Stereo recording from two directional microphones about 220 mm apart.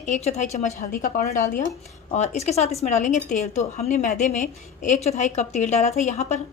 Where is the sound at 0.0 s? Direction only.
30° left (ahead or behind).